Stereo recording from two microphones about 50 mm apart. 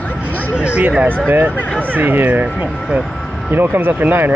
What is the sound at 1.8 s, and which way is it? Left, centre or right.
Speech, right.